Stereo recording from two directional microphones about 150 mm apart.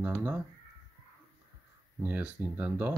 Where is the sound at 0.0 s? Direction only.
15° right (ahead or behind).